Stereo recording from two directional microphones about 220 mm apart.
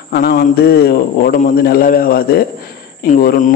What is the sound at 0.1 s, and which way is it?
A man's voice, 40° left (ahead or behind).